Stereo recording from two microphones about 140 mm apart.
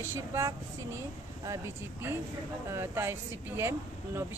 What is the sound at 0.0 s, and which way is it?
Speech, 20° right (ahead or behind).